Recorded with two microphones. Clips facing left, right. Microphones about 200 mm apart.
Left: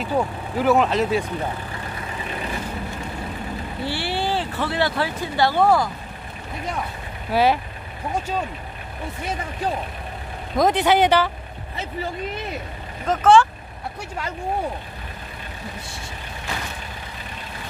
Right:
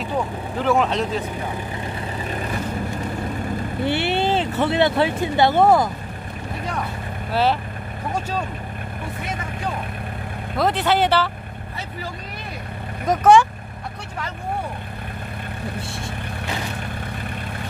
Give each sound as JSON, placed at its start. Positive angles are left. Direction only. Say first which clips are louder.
{"t": 0.6, "sound": "speech", "louder": "left 2 dB", "side_deg": 5}
{"t": 3.8, "sound": "speech", "louder": "right 5 dB", "side_deg": -20}
{"t": 7.3, "sound": "speech", "louder": "left 2 dB", "side_deg": 10}
{"t": 10.6, "sound": "speech", "louder": "left 2 dB", "side_deg": 15}
{"t": 13.0, "sound": "speech", "louder": "right 1 dB", "side_deg": -10}